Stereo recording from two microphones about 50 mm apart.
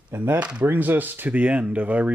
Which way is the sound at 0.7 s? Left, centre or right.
Right.